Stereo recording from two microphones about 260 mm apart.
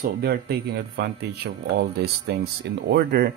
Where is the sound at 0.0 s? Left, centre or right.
Right.